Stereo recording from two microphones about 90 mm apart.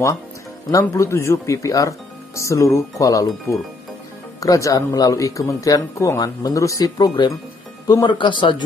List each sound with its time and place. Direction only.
0.7 s speech: 35° left (ahead or behind); by 8.6 s 65° left (ahead or behind)